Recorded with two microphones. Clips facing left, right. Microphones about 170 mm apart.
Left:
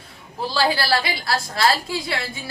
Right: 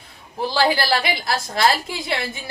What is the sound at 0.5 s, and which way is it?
A woman's voice, 20° right (ahead or behind).